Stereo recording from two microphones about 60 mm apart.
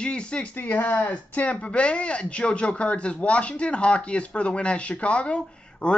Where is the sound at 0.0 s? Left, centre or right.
Centre.